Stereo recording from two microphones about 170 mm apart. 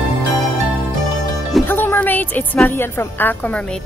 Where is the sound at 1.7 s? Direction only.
10° left (ahead or behind).